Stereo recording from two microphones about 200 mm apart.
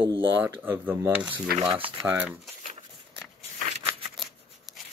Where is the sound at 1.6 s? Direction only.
25° right (ahead or behind).